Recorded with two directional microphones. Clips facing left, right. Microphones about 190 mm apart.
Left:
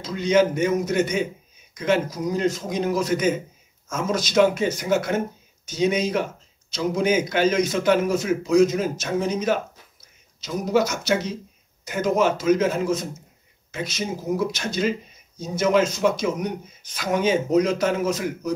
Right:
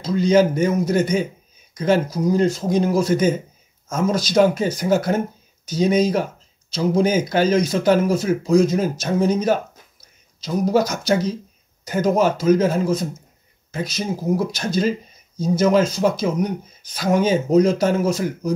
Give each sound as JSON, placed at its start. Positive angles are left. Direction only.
{"t": 0.0, "sound": "speech", "side_deg": -35}